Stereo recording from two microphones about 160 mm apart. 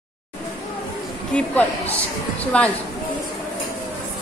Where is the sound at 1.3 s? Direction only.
10° left (ahead or behind).